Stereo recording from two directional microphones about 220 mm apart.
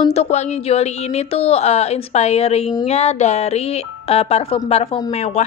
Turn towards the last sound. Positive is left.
turn(degrees=30)  # may be behind; listen again after turning